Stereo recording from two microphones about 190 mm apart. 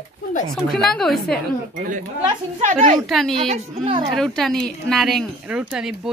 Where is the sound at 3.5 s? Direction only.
35° right (ahead or behind).